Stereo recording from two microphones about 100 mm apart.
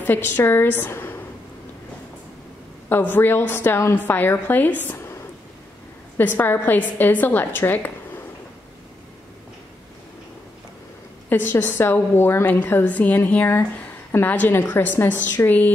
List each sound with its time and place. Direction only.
0.0 s a woman's voice: 20° left (ahead or behind)
2.9 s a woman's voice: 20° left (ahead or behind)
6.1 s a woman's voice: 20° left (ahead or behind)
11.2 s a woman's voice: 20° left (ahead or behind)